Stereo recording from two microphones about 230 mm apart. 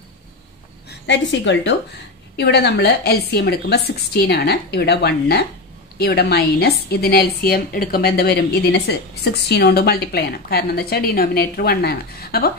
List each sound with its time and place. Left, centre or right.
0.8 s a woman's voice: left